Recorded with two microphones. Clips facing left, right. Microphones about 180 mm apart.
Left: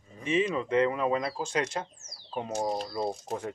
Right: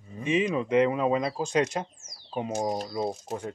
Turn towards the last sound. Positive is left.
turn(degrees=-5)  # may be behind; listen again after turning